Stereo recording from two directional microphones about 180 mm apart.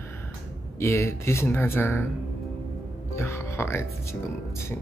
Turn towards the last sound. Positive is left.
turn(degrees=15)  # may be behind; listen again after turning